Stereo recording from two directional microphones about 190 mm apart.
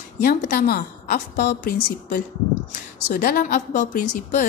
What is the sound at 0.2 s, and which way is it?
A woman's voice, 55° left (ahead or behind).